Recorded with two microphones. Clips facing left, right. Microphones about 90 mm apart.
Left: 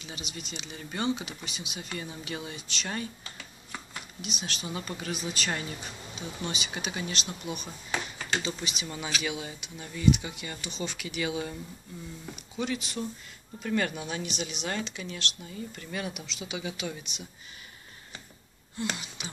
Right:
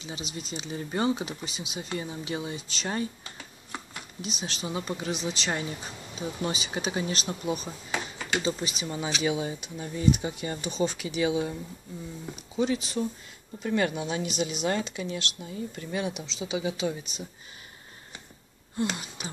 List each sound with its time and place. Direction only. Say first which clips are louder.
0.0 s speech: right 4 dB; 30° right (ahead or behind)
8.8 s speech: right 5 dB; 20° right (ahead or behind)
9.3 s speech: right 7 dB; 35° right (ahead or behind)
12.5 s speech: right 5 dB; 35° right (ahead or behind)
13.6 s speech: right 3 dB; 25° right (ahead or behind)
18.9 s speech: right 3 dB; 40° right (ahead or behind)